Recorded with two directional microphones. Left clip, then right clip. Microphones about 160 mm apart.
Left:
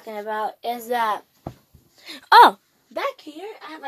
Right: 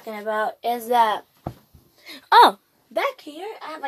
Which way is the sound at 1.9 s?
45° left (ahead or behind).